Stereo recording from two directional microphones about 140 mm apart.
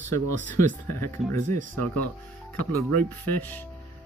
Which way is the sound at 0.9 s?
20° left (ahead or behind).